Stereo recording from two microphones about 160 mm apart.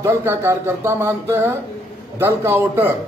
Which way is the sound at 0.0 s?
15° right (ahead or behind).